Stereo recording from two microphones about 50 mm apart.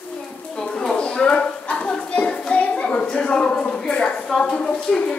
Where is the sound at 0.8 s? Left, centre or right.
Left.